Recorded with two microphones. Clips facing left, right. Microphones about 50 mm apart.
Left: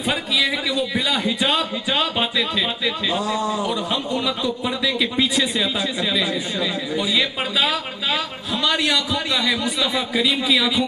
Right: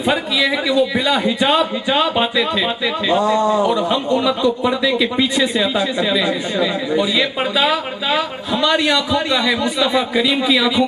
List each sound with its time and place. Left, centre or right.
0.0 s a man's voice: centre
4.8 s a man's voice: centre